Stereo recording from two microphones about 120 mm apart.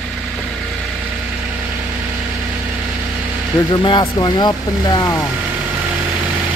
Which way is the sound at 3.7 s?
40° left (ahead or behind).